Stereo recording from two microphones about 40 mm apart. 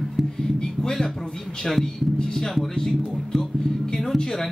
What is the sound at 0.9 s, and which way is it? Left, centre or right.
Speech, centre.